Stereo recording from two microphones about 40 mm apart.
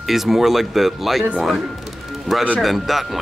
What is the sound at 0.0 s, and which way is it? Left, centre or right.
Speech, centre.